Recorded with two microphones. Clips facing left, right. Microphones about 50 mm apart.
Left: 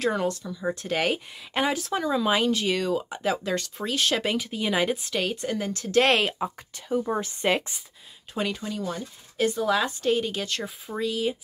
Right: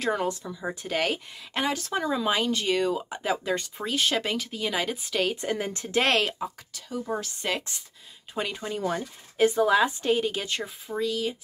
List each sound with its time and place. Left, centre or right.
0.0 s a woman's voice: centre
0.9 s speech: centre
4.2 s speech: centre
5.3 s speech: centre
6.0 s speech: centre
6.4 s speech: left
8.5 s speech: right
9.4 s a woman's voice: right
10.9 s speech: centre